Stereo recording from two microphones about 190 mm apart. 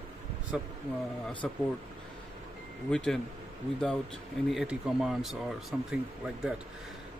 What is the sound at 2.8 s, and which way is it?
Speech, 5° left (ahead or behind).